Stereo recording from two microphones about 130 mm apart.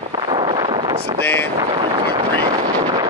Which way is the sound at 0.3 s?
40° right (ahead or behind).